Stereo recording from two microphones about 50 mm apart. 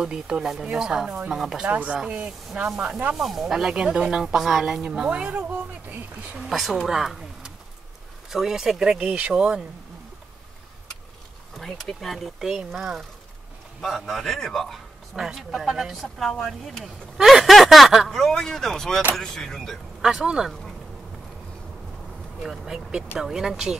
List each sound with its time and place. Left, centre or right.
0.0 s speech: centre
1.7 s speech: right
3.2 s speech: centre
3.5 s speech: centre
5.1 s speech: right
5.4 s speech: right
6.3 s speech: centre
11.6 s speech: centre
12.5 s speech: centre
13.8 s a man's voice: centre
20.0 s speech: centre
22.4 s speech: centre